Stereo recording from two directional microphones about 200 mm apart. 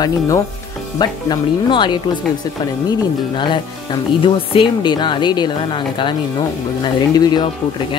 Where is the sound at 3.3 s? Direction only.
25° left (ahead or behind).